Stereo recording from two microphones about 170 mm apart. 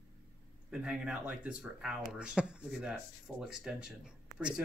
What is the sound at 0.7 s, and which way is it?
Speech, 5° right (ahead or behind).